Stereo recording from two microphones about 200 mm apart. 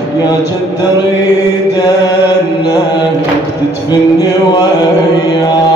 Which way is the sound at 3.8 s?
20° left (ahead or behind).